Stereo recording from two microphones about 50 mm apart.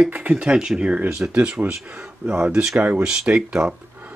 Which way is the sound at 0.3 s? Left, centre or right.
Centre.